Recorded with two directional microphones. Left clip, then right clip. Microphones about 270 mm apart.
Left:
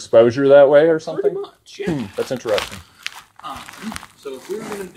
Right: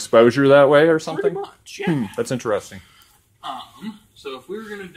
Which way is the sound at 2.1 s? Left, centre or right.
Right.